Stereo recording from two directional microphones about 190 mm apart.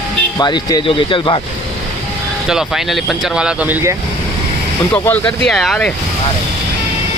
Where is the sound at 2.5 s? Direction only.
Centre (ahead or behind).